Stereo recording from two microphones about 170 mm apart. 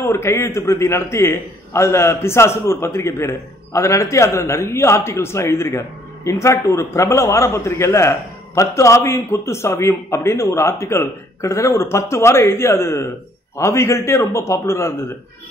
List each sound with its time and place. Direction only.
0.0 s a man's voice: 15° left (ahead or behind)